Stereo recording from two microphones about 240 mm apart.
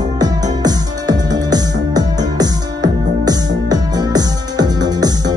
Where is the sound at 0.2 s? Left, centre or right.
Centre.